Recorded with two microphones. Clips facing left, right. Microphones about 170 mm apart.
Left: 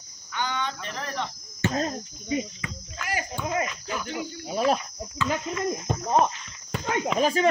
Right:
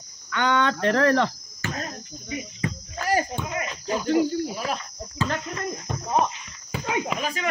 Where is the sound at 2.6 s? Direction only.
35° right (ahead or behind).